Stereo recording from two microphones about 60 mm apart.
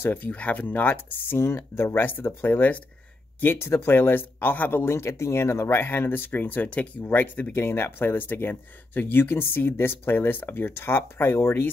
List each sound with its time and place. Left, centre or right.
0.0 s speech: left